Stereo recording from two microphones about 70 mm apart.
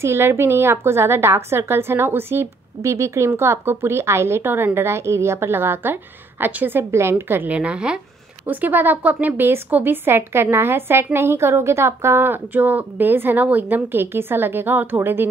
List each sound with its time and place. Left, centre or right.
0.0 s a woman's voice: right
6.8 s a woman's voice: right
7.5 s a woman's voice: centre; by 15.2 s right